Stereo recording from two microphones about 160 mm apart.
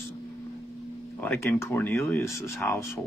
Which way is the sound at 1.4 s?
15° left (ahead or behind).